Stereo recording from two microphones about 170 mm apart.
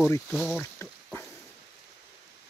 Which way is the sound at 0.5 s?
15° left (ahead or behind).